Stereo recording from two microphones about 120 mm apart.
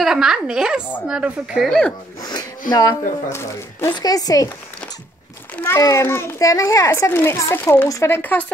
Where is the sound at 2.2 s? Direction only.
35° left (ahead or behind).